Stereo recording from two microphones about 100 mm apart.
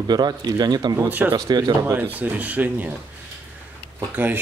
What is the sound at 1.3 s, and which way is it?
Speech, 40° right (ahead or behind).